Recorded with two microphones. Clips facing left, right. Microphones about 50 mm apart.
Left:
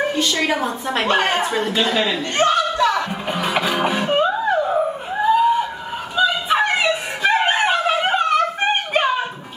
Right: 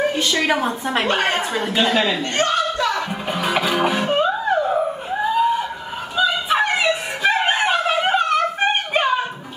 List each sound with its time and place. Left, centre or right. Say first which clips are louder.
0.1 s a woman's voice: right 1 dB; centre
2.3 s speech: left 5 dB; left
3.3 s music: right 2 dB; centre
6.1 s a sound: left 1 dB; centre